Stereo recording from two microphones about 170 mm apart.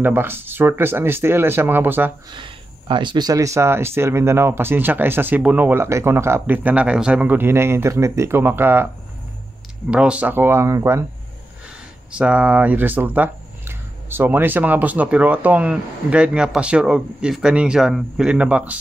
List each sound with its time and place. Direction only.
0.0 s speech: 10° right (ahead or behind)
2.3 s speech: 30° right (ahead or behind); by 8.8 s 15° right (ahead or behind)
9.8 s speech: 5° right (ahead or behind)
12.2 s speech: 10° right (ahead or behind)